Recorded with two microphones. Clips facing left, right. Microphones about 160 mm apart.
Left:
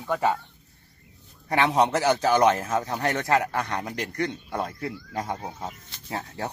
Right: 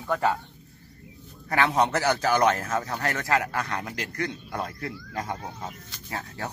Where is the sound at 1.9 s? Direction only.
20° left (ahead or behind).